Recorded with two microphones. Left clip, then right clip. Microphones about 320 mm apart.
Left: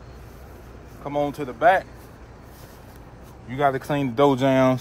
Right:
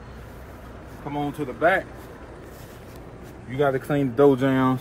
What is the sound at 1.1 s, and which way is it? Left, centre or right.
Speech, centre.